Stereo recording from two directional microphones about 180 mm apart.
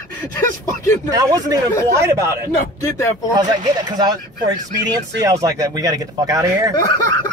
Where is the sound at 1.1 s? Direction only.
20° right (ahead or behind).